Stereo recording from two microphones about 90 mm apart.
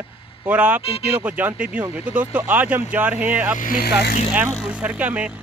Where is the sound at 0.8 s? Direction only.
90° left.